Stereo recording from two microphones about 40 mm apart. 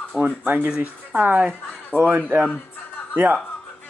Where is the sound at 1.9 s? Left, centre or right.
Right.